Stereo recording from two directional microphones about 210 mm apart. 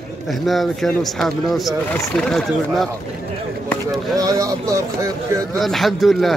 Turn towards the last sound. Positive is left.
turn(degrees=0)  # may be behind; listen again after turning